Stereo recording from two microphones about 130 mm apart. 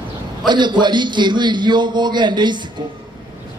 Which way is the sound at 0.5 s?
35° right (ahead or behind).